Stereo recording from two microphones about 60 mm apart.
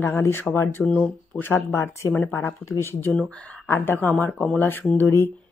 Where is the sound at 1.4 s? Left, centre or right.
Left.